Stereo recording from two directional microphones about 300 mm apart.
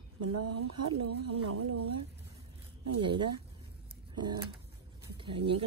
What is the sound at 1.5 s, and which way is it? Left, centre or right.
Speech, right.